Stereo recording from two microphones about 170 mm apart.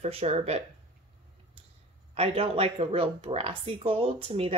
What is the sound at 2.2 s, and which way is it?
Speech, 35° right (ahead or behind).